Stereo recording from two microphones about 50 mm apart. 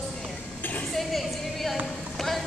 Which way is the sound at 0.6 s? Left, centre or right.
Left.